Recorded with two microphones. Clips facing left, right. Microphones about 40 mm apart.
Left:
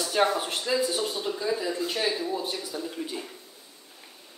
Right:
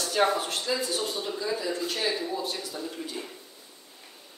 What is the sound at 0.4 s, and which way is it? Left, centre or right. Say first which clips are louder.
Speech: left 3 dB; centre.